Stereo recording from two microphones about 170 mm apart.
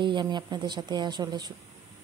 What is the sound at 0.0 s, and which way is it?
Speech, 25° right (ahead or behind).